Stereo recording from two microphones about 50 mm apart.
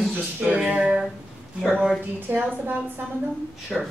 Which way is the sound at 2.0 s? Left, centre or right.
Right.